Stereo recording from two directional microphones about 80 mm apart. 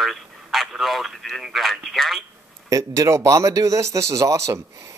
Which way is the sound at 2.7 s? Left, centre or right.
Right.